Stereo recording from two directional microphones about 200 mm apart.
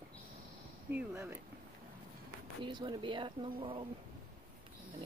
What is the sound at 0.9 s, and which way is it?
Speech, 10° right (ahead or behind).